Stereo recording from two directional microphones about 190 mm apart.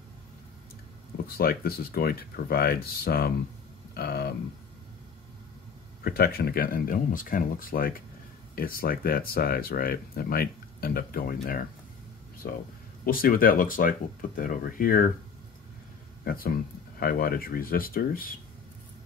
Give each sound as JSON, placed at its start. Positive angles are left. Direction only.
{"t": 1.2, "sound": "speech", "side_deg": 55}
{"t": 6.0, "sound": "speech", "side_deg": 55}
{"t": 12.4, "sound": "speech", "side_deg": 60}
{"t": 16.3, "sound": "speech", "side_deg": 50}